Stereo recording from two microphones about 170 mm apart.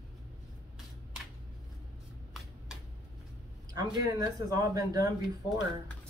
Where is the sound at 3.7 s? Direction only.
20° right (ahead or behind).